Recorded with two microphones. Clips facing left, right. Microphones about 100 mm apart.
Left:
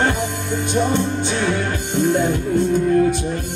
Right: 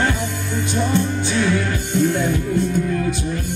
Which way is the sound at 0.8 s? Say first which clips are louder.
Left 1 dB; 20° left (ahead or behind).